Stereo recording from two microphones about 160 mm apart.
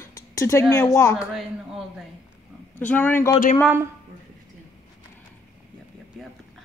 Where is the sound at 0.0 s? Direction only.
20° left (ahead or behind).